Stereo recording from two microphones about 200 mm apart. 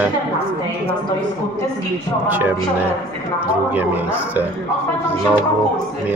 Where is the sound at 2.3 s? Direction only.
10° right (ahead or behind).